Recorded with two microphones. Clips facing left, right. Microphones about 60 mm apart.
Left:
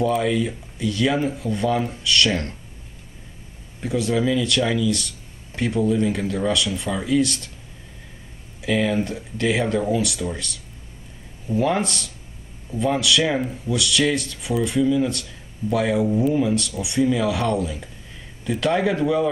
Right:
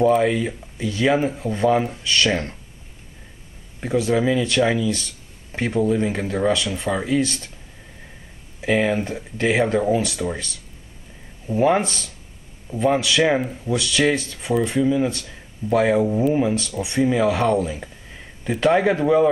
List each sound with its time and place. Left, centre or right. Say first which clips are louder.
0.2 s speech: right 2 dB; right
3.8 s speech: right 2 dB; right
8.5 s speech: right 1 dB; right
11.5 s speech: right 3 dB; right